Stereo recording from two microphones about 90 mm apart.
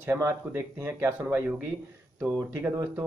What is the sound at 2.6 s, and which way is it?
Speech, 30° right (ahead or behind).